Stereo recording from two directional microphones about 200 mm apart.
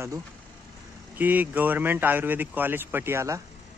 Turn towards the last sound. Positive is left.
turn(degrees=-10)  # may be behind; listen again after turning